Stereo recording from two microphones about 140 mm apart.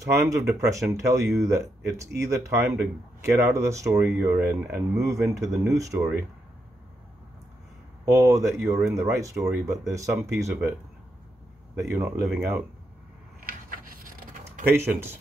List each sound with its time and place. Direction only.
0.0 s speech: 20° right (ahead or behind)
8.0 s speech: 20° right (ahead or behind)
11.8 s speech: 20° right (ahead or behind)
14.7 s speech: 15° right (ahead or behind)